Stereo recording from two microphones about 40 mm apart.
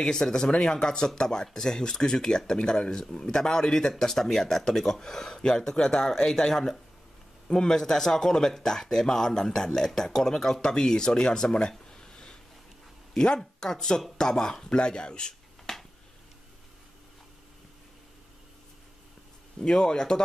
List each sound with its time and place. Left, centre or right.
0.0 s speech: centre
19.7 s speech: centre